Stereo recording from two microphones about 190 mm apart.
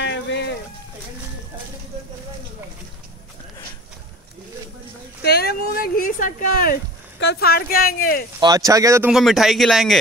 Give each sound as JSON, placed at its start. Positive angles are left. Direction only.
{"t": 0.0, "sound": "music", "side_deg": 65}
{"t": 5.2, "sound": "speech", "side_deg": 55}
{"t": 8.4, "sound": "speech", "side_deg": -20}
{"t": 9.1, "sound": "speech", "side_deg": 0}